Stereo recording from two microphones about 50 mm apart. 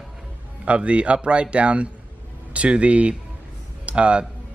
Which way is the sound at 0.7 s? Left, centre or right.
Right.